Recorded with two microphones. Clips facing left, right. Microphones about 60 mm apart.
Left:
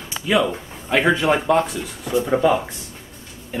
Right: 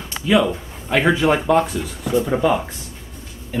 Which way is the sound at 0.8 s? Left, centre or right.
Centre.